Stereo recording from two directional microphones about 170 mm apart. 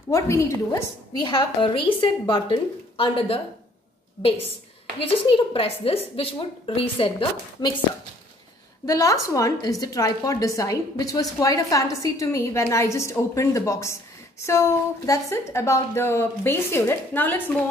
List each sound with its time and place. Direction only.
0.1 s a woman's voice: 15° left (ahead or behind)
1.2 s a woman's voice: 25° left (ahead or behind)
5.1 s a woman's voice: 35° left (ahead or behind)
8.8 s a woman's voice: 20° left (ahead or behind)